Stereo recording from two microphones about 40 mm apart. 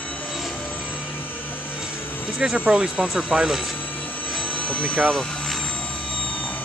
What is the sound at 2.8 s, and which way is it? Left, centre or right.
Speech, centre.